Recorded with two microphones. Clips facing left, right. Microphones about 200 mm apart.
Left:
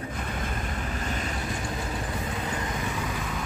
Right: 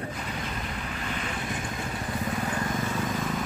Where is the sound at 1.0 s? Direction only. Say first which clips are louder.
Left 1 dB; 40° left (ahead or behind).